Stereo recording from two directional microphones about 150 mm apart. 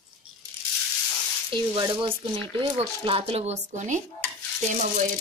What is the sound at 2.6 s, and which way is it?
Speech, 25° right (ahead or behind).